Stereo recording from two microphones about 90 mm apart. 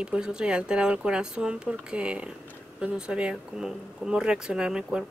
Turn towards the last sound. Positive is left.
turn(degrees=-10)  # may be behind; listen again after turning